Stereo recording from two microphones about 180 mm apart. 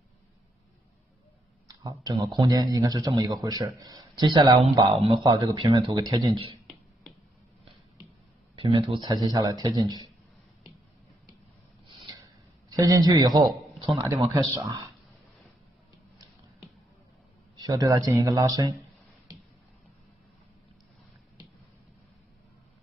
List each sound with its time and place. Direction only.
1.7 s speech: 20° right (ahead or behind)
4.9 s a man's voice: 35° right (ahead or behind)
6.7 s finger snapping: centre (ahead or behind)
8.5 s speech: 20° right (ahead or behind)
12.6 s speech: 20° right (ahead or behind)
17.6 s speech: 20° right (ahead or behind)